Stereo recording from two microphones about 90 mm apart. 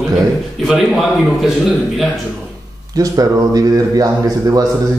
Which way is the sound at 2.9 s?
40° right (ahead or behind).